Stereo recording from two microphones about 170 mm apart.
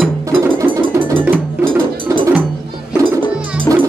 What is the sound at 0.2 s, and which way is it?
Music, 20° right (ahead or behind).